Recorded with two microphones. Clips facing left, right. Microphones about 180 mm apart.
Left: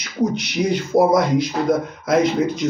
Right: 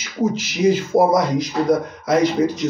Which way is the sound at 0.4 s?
5° right (ahead or behind).